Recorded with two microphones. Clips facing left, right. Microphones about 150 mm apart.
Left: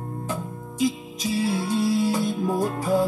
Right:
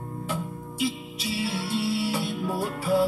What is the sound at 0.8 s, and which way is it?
Music, 40° left (ahead or behind).